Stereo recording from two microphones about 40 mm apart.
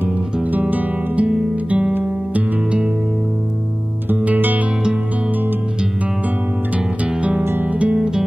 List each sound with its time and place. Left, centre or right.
0.5 s guitar: right
1.2 s music: right
4.2 s music: right
7.2 s music: right
8.0 s music: centre